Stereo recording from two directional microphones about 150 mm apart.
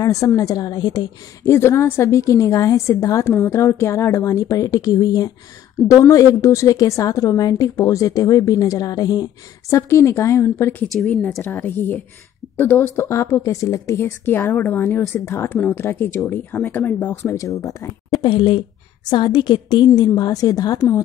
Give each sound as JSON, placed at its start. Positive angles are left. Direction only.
{"t": 0.0, "sound": "a woman's voice", "side_deg": 20}
{"t": 18.2, "sound": "a woman's voice", "side_deg": 35}